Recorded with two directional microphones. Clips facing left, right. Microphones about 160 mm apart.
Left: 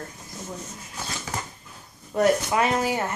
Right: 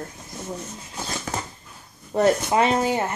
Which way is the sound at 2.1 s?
25° right (ahead or behind).